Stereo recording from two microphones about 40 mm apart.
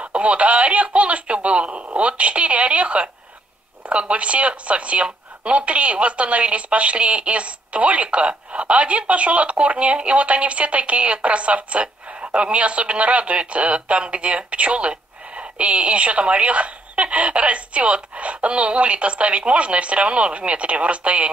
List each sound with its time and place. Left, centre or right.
0.0 s a woman's voice: right